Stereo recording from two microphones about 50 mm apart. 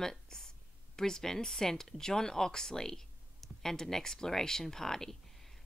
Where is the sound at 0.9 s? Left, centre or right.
Centre.